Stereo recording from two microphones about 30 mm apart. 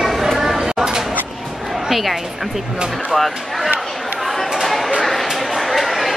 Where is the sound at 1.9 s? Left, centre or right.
Centre.